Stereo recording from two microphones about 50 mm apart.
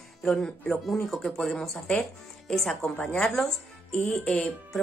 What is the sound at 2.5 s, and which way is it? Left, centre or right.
A woman's voice, centre.